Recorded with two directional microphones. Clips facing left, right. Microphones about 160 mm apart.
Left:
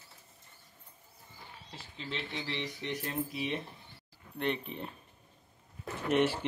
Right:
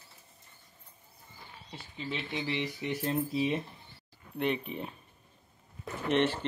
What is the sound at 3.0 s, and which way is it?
Speech, 30° right (ahead or behind).